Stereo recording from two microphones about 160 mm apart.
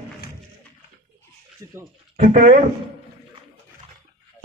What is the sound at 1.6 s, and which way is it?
Speech, 20° right (ahead or behind).